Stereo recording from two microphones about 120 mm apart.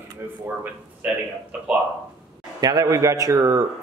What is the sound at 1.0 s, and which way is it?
Speech, 10° right (ahead or behind).